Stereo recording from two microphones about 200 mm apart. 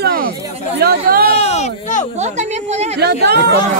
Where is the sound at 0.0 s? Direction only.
50° right (ahead or behind).